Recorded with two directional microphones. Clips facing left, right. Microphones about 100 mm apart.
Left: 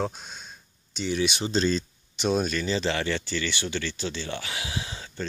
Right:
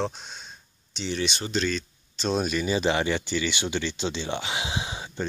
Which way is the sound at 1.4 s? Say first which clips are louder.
Left 3 dB; 35° left (ahead or behind).